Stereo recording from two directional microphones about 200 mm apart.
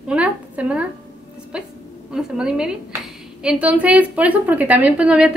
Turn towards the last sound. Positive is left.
turn(degrees=-5)  # may be behind; listen again after turning